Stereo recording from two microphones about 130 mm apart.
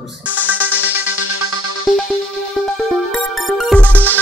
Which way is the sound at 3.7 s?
15° left (ahead or behind).